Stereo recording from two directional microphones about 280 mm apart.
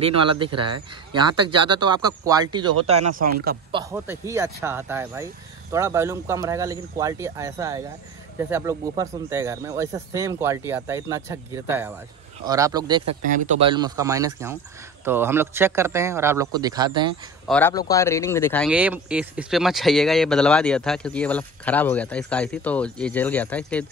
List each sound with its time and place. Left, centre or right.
0.4 s speech: centre
13.2 s speech: right
17.5 s speech: centre